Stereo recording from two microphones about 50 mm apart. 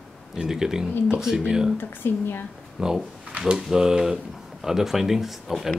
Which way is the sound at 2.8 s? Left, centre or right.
Centre.